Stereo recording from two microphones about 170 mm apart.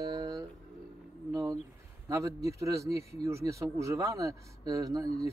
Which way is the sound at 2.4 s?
20° right (ahead or behind).